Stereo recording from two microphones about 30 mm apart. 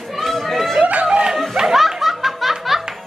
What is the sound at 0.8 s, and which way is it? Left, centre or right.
Snicker, right.